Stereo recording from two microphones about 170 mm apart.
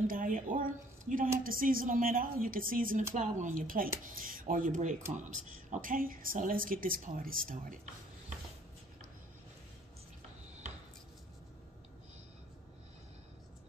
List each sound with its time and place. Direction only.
0.0 s a woman's voice: 55° right (ahead or behind)